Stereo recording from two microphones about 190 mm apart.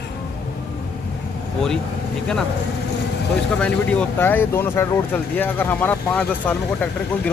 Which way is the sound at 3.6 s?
5° left (ahead or behind).